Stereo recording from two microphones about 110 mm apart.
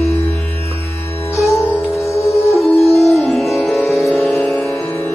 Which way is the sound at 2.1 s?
25° left (ahead or behind).